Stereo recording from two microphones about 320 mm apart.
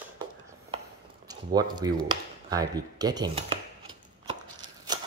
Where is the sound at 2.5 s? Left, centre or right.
Centre.